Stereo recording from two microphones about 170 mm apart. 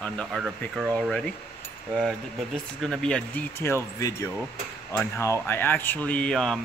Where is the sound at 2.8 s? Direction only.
5° left (ahead or behind).